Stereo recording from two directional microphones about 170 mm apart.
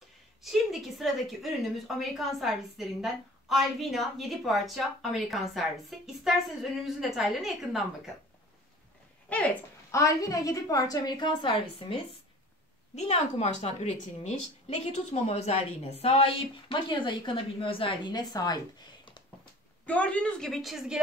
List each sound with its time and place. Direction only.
0.4 s a woman's voice: centre (ahead or behind)
9.3 s a woman's voice: 10° left (ahead or behind)
19.9 s a woman's voice: 5° left (ahead or behind)